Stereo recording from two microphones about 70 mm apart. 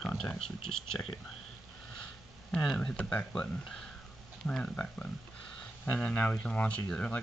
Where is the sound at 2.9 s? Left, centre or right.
Centre.